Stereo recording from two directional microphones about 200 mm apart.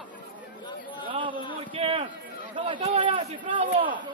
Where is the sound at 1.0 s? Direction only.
25° right (ahead or behind).